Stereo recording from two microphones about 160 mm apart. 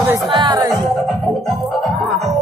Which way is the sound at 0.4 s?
25° right (ahead or behind).